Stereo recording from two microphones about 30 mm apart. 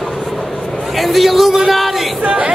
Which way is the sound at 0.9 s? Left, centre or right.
Centre.